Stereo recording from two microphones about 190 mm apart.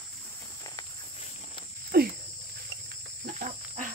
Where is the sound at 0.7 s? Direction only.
20° left (ahead or behind).